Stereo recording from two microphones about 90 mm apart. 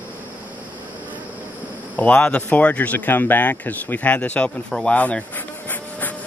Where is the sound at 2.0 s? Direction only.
15° left (ahead or behind).